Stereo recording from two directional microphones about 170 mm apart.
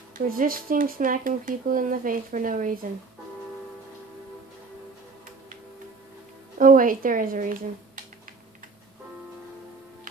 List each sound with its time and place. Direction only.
0.3 s speech: 55° right (ahead or behind)
6.6 s speech: 55° right (ahead or behind)